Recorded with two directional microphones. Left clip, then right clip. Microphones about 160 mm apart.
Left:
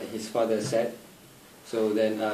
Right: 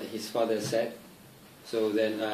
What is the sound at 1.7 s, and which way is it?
Speech, 5° left (ahead or behind).